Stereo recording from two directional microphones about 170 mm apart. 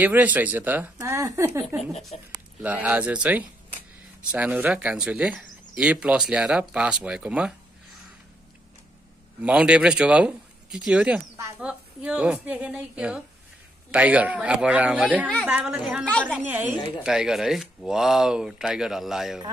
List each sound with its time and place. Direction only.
0.0 s speech: 10° right (ahead or behind)
2.1 s speech: 40° left (ahead or behind)
2.6 s speech: 10° right (ahead or behind)
9.4 s speech: 5° right (ahead or behind)
16.1 s a woman's voice: 5° left (ahead or behind)
16.4 s speech: 10° right (ahead or behind)